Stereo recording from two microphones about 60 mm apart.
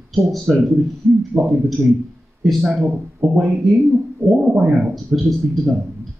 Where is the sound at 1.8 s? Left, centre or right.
Right.